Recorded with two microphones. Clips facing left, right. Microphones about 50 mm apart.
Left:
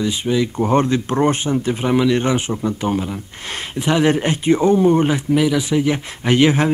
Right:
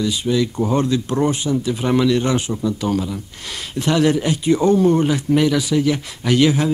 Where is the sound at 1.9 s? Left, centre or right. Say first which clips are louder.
Even; centre.